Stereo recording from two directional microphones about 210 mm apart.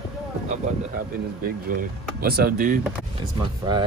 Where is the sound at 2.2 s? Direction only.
45° right (ahead or behind).